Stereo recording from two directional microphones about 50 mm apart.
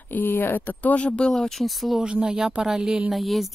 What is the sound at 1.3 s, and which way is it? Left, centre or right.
Speech, centre.